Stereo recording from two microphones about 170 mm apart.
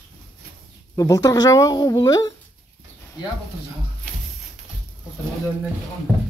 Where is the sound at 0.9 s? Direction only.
20° left (ahead or behind).